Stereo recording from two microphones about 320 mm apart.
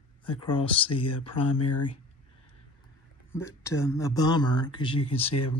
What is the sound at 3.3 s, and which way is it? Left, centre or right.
Speech, centre.